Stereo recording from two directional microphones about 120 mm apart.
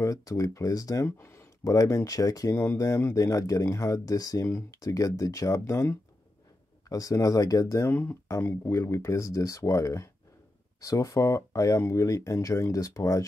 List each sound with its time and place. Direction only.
0.0 s speech: 30° left (ahead or behind)